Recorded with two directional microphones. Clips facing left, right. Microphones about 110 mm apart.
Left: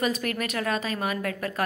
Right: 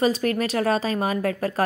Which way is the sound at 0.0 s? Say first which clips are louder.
Right 6 dB; 30° right (ahead or behind).